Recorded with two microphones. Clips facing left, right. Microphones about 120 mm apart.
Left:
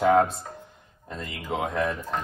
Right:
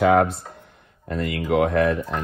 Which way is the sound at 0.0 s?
70° right (ahead or behind).